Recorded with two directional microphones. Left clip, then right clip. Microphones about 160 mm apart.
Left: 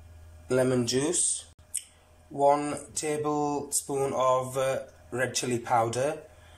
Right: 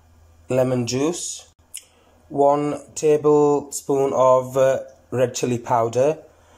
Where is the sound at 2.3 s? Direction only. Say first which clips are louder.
Right 6 dB; 15° right (ahead or behind).